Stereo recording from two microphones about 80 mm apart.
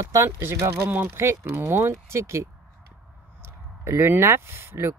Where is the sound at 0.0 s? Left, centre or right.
Right.